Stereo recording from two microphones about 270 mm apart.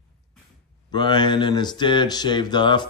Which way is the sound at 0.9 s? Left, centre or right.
Centre.